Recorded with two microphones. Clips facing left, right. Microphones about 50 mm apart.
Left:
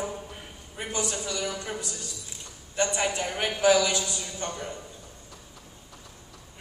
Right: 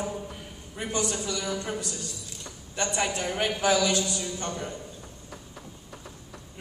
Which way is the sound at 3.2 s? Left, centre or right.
Centre.